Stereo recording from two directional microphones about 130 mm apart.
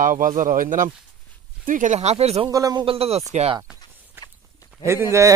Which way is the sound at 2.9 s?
50° right (ahead or behind).